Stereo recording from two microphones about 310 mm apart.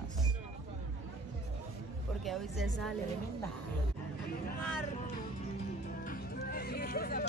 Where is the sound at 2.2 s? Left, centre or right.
Centre.